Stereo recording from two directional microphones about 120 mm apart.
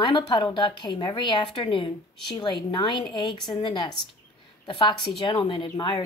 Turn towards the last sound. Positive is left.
turn(degrees=45)  # may be behind; listen again after turning